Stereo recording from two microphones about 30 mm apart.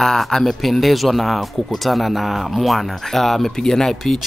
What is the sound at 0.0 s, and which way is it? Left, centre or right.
Speech, centre.